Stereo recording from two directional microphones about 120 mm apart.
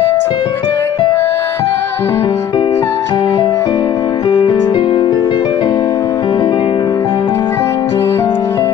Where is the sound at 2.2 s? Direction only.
45° left (ahead or behind).